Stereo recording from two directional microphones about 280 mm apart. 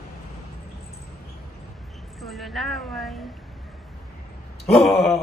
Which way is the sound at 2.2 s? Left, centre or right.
Centre.